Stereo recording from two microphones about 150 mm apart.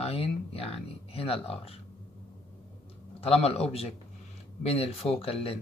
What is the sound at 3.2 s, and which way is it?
Speech, 40° left (ahead or behind).